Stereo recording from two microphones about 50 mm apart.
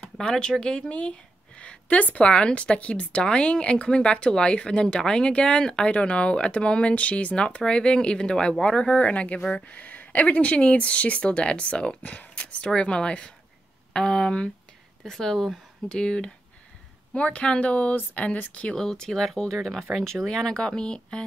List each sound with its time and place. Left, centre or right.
0.2 s speech: centre
18.8 s speech: centre
20.2 s speech: centre